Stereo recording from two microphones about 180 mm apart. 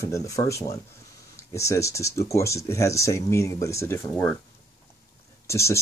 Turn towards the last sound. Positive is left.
turn(degrees=15)  # may be behind; listen again after turning